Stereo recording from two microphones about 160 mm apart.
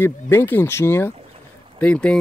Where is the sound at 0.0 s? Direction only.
15° left (ahead or behind).